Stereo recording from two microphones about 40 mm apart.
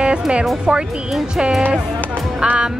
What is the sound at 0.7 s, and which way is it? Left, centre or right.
Speech, right.